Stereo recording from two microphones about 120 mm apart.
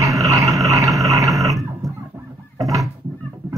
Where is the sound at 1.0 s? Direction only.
30° right (ahead or behind).